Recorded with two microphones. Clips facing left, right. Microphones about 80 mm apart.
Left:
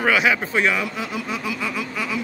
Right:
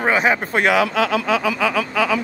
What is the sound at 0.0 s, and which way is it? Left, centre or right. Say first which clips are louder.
Speech: right 2 dB; right.